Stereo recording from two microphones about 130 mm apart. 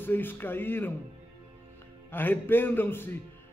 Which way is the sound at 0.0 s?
15° left (ahead or behind).